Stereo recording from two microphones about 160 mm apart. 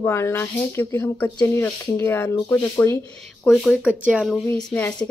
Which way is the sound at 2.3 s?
30° left (ahead or behind).